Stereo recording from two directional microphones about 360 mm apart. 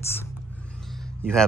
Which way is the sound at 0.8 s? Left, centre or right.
Centre.